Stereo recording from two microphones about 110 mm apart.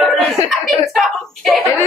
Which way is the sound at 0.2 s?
Centre (ahead or behind).